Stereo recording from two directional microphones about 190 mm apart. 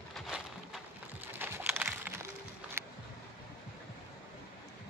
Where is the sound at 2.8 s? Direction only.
10° right (ahead or behind).